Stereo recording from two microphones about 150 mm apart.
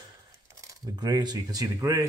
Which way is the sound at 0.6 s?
25° right (ahead or behind).